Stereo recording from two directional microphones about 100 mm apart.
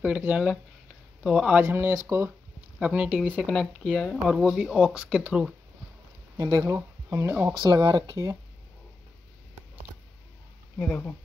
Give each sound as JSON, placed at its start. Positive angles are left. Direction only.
{"t": 0.0, "sound": "speech", "side_deg": -15}
{"t": 1.6, "sound": "speech", "side_deg": -25}
{"t": 2.8, "sound": "speech", "side_deg": -15}
{"t": 3.3, "sound": "speech", "side_deg": 10}
{"t": 4.2, "sound": "speech", "side_deg": -5}
{"t": 4.9, "sound": "speech", "side_deg": -10}
{"t": 6.3, "sound": "speech", "side_deg": -35}
{"t": 7.5, "sound": "speech", "side_deg": -45}
{"t": 10.8, "sound": "speech", "side_deg": 20}